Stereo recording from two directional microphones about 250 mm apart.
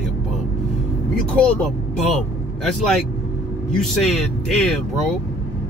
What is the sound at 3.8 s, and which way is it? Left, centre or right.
Speech, centre.